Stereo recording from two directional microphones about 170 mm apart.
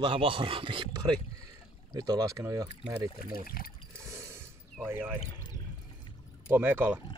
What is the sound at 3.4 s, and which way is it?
Speech, 60° left (ahead or behind).